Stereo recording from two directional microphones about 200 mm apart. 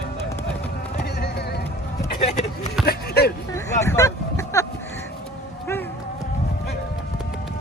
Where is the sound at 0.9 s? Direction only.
50° left (ahead or behind).